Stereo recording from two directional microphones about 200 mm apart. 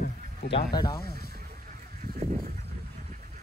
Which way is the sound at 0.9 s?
50° left (ahead or behind).